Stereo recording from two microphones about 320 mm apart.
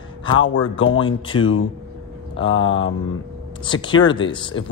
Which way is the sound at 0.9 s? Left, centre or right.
Centre.